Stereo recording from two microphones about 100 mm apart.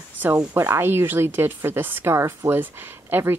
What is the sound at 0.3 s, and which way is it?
Speech, 30° right (ahead or behind).